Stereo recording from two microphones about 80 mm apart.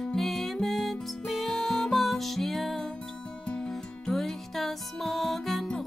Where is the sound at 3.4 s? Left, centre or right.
Centre.